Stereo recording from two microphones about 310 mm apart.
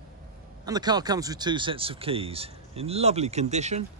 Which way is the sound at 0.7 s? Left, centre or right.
Centre.